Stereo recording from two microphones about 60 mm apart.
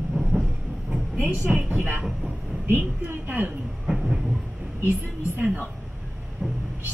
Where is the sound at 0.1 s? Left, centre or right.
Centre.